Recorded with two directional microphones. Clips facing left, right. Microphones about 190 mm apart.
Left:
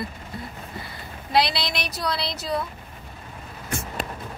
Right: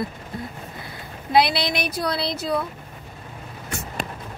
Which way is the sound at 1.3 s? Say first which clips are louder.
Right 3 dB; 55° right (ahead or behind).